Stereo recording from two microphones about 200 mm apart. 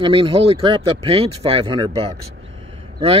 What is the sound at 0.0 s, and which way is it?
Speech, 25° right (ahead or behind).